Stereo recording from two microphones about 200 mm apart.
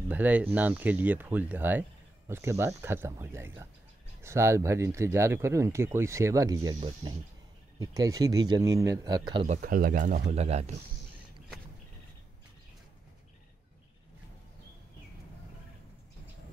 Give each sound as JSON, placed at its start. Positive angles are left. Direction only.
{"t": 0.1, "sound": "speech", "side_deg": -10}
{"t": 9.5, "sound": "speech", "side_deg": -45}
{"t": 10.3, "sound": "speech", "side_deg": -30}